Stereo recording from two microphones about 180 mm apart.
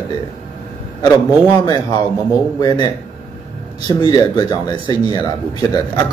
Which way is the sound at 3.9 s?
25° left (ahead or behind).